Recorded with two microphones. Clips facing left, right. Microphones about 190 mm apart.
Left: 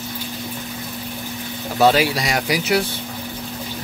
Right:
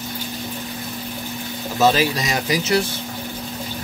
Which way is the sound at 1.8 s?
10° left (ahead or behind).